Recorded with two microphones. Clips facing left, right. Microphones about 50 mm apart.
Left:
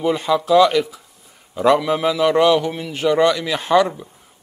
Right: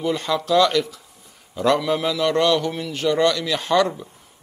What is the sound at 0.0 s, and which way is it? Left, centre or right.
A man's voice, centre.